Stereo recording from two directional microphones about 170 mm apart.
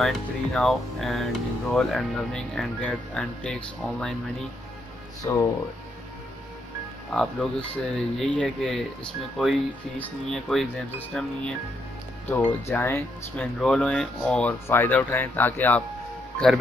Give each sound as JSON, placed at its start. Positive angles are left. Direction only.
{"t": 0.0, "sound": "speech", "side_deg": 5}
{"t": 5.2, "sound": "speech", "side_deg": 15}
{"t": 7.1, "sound": "speech", "side_deg": 10}
{"t": 12.6, "sound": "speech", "side_deg": 15}